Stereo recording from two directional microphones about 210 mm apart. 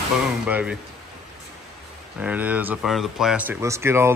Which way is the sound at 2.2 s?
5° right (ahead or behind).